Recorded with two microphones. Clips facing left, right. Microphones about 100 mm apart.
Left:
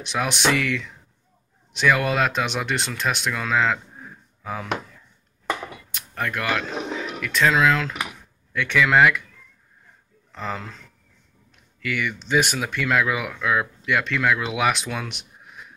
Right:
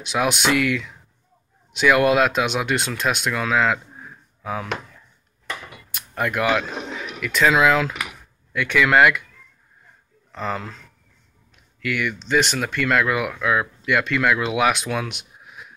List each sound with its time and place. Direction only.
0.1 s speech: 5° right (ahead or behind)
5.9 s speech: 15° right (ahead or behind)
7.2 s speech: 5° right (ahead or behind)
10.3 s speech: centre (ahead or behind)
11.8 s speech: centre (ahead or behind)